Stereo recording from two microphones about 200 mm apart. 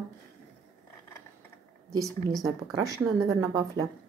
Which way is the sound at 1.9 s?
15° right (ahead or behind).